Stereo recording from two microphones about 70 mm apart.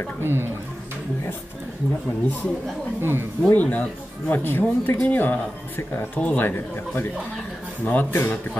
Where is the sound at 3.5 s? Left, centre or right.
Left.